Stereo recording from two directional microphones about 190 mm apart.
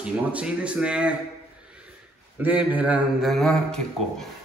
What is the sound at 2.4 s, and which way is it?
A man's voice, 10° right (ahead or behind).